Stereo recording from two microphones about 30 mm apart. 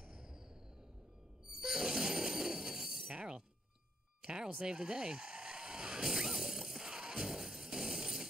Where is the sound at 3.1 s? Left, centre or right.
Right.